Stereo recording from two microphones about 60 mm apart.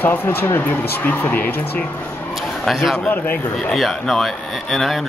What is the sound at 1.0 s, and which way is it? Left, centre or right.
Speech, left.